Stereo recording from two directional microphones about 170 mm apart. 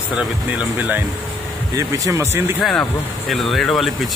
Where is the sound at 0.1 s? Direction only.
5° right (ahead or behind).